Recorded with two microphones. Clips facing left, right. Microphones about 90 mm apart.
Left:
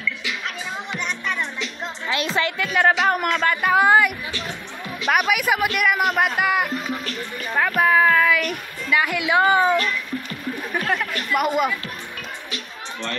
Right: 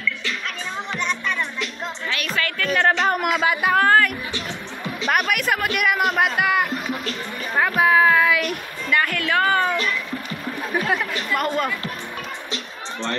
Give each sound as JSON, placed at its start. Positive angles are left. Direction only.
{"t": 0.9, "sound": "music", "side_deg": 15}
{"t": 2.0, "sound": "a woman's voice", "side_deg": 25}
{"t": 2.6, "sound": "speech", "side_deg": 10}
{"t": 3.7, "sound": "a woman's voice", "side_deg": 10}
{"t": 7.5, "sound": "a sound", "side_deg": -10}
{"t": 8.9, "sound": "a woman's voice", "side_deg": 10}
{"t": 10.7, "sound": "speech", "side_deg": -5}
{"t": 11.3, "sound": "a woman's voice", "side_deg": 10}